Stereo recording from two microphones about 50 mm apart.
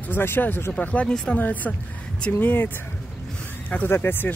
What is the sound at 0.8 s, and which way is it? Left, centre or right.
Speech, left.